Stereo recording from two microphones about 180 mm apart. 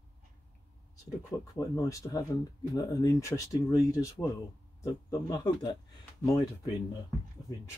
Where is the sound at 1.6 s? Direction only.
15° left (ahead or behind).